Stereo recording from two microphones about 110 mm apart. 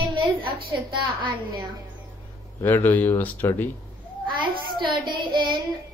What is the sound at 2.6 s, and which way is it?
Speech, 20° left (ahead or behind).